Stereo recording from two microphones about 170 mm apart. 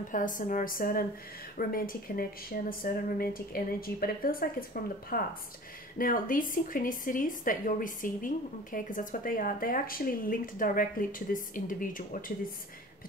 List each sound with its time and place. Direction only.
0.1 s speech: 50° left (ahead or behind)